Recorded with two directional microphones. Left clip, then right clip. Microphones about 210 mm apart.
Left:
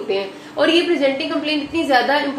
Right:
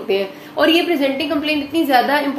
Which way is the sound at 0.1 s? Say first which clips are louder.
Right 4 dB; 40° right (ahead or behind).